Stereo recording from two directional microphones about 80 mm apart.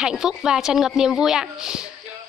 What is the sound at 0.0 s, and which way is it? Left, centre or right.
Speech, centre.